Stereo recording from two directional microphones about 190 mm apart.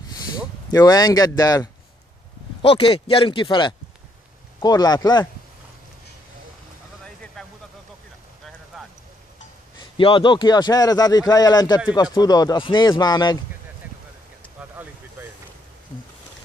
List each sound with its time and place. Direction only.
0.7 s a man's voice: 20° left (ahead or behind)
2.6 s a man's voice: 30° left (ahead or behind)
7.4 s vehicle: 5° left (ahead or behind)
8.7 s a sound: centre (ahead or behind)
9.8 s a man's voice: 25° left (ahead or behind)
14.8 s vehicle: 10° right (ahead or behind)